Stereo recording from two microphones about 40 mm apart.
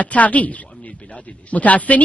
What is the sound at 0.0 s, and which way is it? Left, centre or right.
A woman's voice, left.